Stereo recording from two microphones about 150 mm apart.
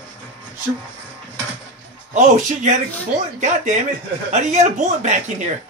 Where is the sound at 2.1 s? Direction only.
55° right (ahead or behind).